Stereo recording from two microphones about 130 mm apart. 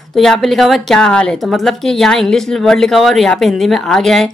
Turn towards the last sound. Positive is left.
turn(degrees=0)  # may be behind; listen again after turning